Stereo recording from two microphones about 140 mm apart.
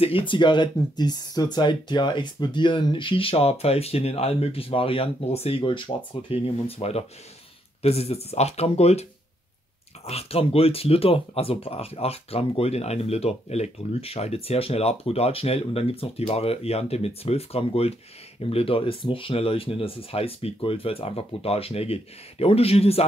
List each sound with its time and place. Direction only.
0.0 s speech: 40° left (ahead or behind)
10.0 s speech: 45° left (ahead or behind)